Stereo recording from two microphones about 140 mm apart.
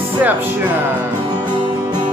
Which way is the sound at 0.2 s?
10° right (ahead or behind).